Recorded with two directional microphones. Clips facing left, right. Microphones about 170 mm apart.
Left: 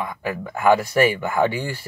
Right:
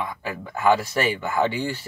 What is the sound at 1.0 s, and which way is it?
Speech, 10° left (ahead or behind).